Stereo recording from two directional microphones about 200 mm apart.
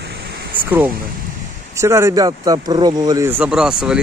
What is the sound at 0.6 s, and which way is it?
Speech, 10° right (ahead or behind).